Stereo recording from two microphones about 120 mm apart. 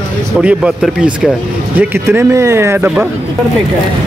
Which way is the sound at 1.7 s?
20° right (ahead or behind).